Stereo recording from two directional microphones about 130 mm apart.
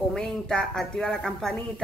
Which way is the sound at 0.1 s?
5° left (ahead or behind).